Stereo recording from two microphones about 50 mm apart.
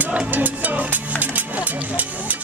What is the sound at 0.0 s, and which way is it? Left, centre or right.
Music, right.